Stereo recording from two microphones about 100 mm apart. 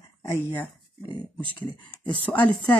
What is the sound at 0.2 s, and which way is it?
Speech, 25° left (ahead or behind).